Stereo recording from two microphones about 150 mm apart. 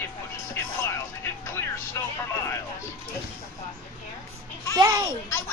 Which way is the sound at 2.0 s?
20° left (ahead or behind).